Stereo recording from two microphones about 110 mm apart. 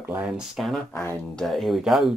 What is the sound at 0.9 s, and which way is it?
Speech, 20° left (ahead or behind).